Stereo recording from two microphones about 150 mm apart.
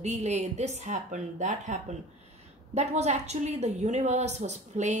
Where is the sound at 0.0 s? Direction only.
50° right (ahead or behind).